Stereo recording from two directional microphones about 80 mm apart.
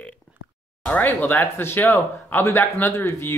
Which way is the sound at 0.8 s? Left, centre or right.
Left.